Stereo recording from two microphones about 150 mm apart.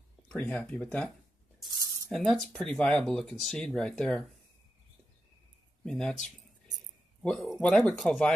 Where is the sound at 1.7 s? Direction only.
25° right (ahead or behind).